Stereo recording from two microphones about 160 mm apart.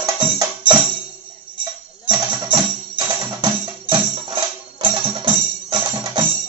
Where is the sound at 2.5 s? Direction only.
30° right (ahead or behind).